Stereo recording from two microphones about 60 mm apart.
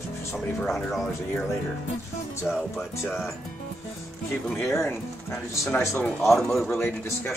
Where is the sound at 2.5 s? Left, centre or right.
Left.